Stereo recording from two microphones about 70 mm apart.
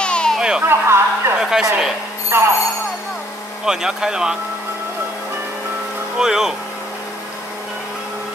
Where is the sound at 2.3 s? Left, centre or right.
Right.